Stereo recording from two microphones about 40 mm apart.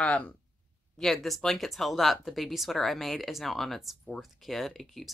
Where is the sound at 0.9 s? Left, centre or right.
Centre.